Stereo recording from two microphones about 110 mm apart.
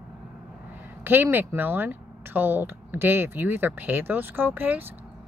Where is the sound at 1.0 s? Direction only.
20° right (ahead or behind).